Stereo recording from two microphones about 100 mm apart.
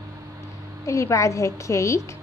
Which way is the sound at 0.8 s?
30° left (ahead or behind).